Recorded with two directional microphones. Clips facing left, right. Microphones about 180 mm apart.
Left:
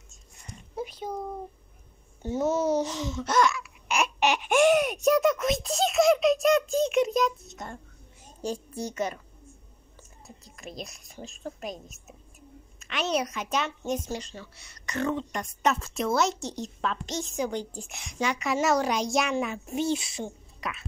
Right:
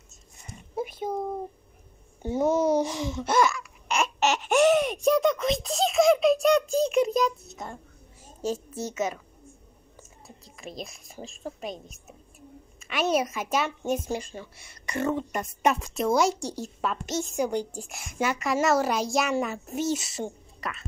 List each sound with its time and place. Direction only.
0.7 s a sound: 50° right (ahead or behind)
2.2 s speech: 15° right (ahead or behind)
3.5 s a sound: 5° left (ahead or behind)
5.0 s a child's voice: 5° left (ahead or behind)
10.2 s a woman's voice: centre (ahead or behind)
13.3 s a woman's voice: 5° right (ahead or behind)